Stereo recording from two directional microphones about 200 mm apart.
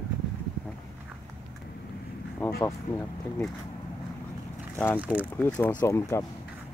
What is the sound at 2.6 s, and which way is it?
Speech, 15° left (ahead or behind).